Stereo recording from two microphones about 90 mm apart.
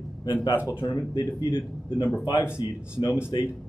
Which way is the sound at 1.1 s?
60° left (ahead or behind).